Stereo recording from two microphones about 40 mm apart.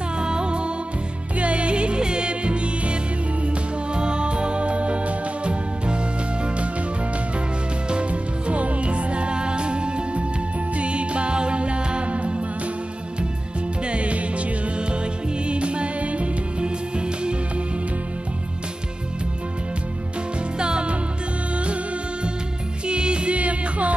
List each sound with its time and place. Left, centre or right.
0.2 s music: right
7.9 s music: right
13.8 s music: right
20.5 s music: right
22.8 s music: right